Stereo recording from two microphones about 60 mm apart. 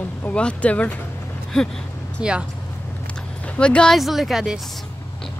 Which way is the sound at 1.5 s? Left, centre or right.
Centre.